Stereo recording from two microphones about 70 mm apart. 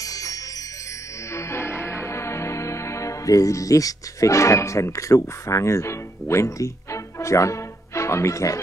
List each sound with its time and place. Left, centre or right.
0.0 s music: left
1.3 s music: left